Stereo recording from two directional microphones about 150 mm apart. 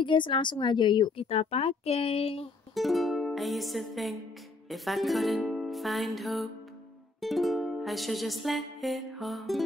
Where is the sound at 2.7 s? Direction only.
Centre (ahead or behind).